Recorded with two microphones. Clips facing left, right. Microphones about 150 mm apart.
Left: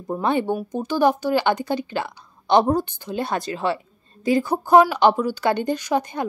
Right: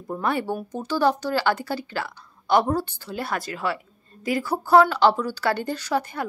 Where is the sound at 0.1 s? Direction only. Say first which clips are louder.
Left 4 dB; 20° left (ahead or behind).